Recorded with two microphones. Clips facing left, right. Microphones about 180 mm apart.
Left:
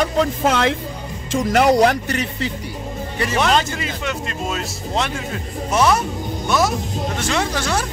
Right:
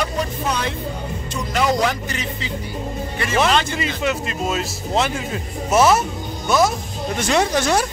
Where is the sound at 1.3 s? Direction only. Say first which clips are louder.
Left 6 dB; 65° left (ahead or behind).